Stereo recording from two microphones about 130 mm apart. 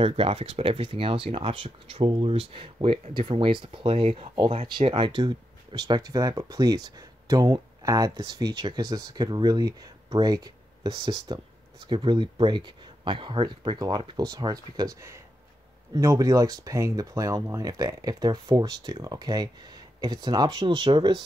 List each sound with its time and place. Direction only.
0.0 s speech: 45° right (ahead or behind)